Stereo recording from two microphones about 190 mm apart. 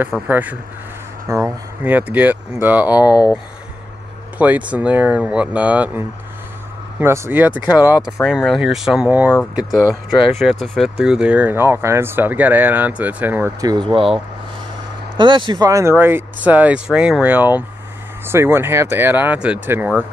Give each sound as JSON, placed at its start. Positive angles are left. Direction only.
{"t": 0.3, "sound": "speech", "side_deg": -10}
{"t": 3.0, "sound": "speech", "side_deg": 20}
{"t": 4.4, "sound": "speech", "side_deg": -5}
{"t": 15.1, "sound": "speech", "side_deg": -25}